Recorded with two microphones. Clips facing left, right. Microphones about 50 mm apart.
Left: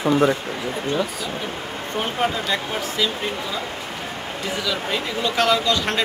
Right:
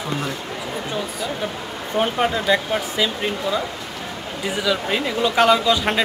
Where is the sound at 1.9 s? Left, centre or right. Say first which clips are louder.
Right 3 dB; centre.